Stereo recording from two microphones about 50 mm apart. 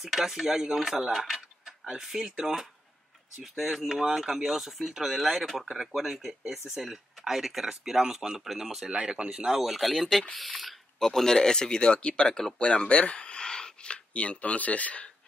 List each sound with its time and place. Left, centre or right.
0.0 s speech: centre
8.8 s speech: centre; by 15.0 s left